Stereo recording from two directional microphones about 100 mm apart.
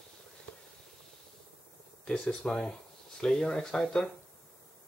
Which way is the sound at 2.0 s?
10° left (ahead or behind).